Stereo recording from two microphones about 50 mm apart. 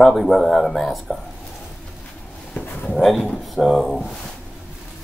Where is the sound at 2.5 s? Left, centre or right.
Left.